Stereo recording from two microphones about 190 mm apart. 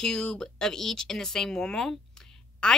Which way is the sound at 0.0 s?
5° left (ahead or behind).